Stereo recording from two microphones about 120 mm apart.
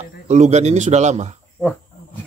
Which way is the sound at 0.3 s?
70° right (ahead or behind).